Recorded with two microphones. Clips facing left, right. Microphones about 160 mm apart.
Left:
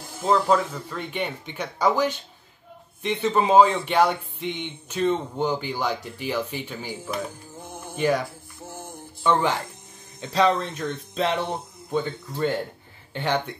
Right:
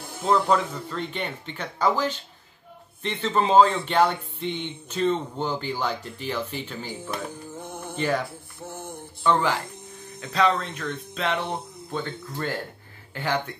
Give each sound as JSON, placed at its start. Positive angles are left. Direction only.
{"t": 0.5, "sound": "speech", "side_deg": 10}
{"t": 10.2, "sound": "speech", "side_deg": 30}
{"t": 11.9, "sound": "speech", "side_deg": 10}
{"t": 13.1, "sound": "speech", "side_deg": 20}